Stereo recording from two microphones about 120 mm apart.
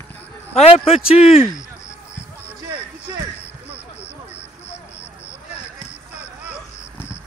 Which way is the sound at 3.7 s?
20° left (ahead or behind).